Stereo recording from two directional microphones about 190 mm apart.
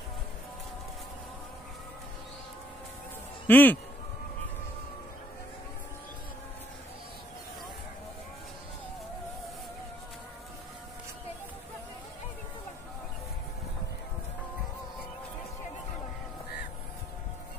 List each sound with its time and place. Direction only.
3.4 s a man's voice: 10° left (ahead or behind)